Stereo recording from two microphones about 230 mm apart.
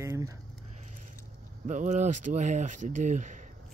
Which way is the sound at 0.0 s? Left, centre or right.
Centre.